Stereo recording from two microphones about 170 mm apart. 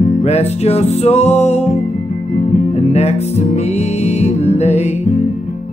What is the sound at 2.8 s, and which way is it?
Music, 40° left (ahead or behind).